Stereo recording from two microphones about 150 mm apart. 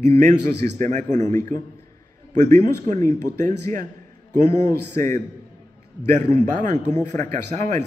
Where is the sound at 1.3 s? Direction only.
15° left (ahead or behind).